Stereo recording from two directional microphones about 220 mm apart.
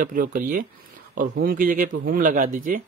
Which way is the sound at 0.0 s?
40° right (ahead or behind).